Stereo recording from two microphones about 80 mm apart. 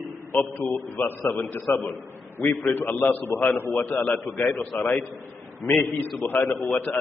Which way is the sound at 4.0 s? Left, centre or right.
Centre.